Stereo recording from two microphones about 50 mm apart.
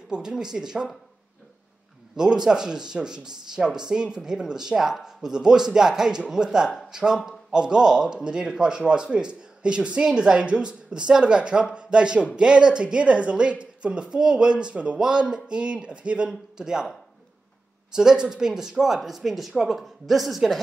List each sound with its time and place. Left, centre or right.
0.1 s speech: centre
2.1 s a woman's voice: centre
17.9 s speech: centre